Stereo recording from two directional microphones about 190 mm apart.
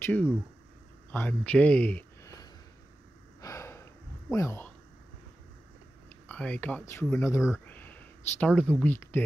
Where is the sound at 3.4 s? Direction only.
15° left (ahead or behind).